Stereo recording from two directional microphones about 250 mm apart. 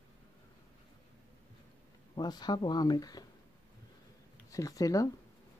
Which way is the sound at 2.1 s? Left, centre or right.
Centre.